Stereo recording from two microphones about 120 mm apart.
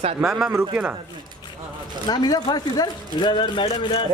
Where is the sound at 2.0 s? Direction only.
35° left (ahead or behind).